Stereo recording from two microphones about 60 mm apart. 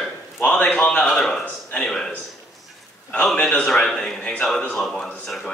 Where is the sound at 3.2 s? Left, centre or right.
Centre.